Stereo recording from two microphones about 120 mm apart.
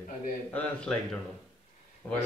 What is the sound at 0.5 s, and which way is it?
Speech, 10° left (ahead or behind).